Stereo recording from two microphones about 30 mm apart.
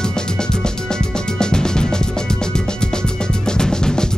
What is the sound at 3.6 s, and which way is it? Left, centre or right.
Drum kit, left.